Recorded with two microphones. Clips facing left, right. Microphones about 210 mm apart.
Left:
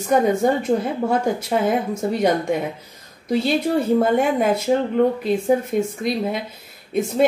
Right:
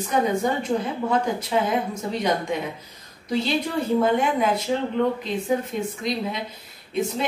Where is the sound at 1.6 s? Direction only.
50° left (ahead or behind).